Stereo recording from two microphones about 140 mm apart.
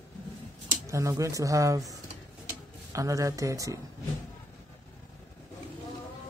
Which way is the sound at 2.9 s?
25° right (ahead or behind).